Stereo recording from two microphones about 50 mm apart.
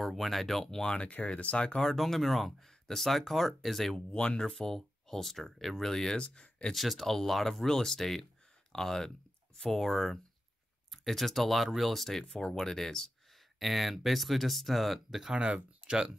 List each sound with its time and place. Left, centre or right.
0.0 s speech: centre; by 1.8 s left
1.8 s speech: centre
4.1 s speech: centre
6.1 s speech: centre
6.7 s speech: centre
15.3 s speech: right